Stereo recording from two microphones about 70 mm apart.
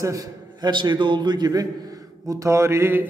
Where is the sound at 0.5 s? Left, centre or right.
Right.